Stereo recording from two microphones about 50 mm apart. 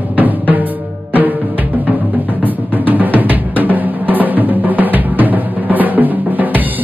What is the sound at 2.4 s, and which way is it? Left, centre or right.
Drum, right.